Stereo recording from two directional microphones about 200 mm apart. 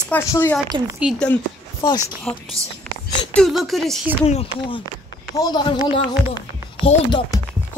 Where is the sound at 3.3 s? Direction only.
Centre (ahead or behind).